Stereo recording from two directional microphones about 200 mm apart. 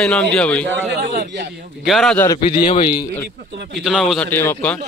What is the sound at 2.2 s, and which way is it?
Speech, 20° left (ahead or behind).